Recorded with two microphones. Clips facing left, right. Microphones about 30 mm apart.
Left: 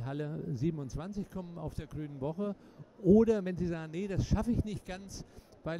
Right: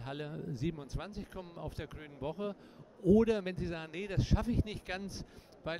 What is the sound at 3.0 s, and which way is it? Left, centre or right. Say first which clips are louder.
Speech: left 3 dB; right.